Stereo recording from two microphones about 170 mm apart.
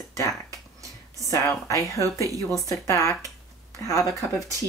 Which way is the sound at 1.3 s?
20° left (ahead or behind).